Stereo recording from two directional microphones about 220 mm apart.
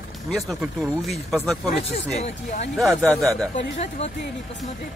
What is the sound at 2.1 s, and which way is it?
Speech, 30° left (ahead or behind).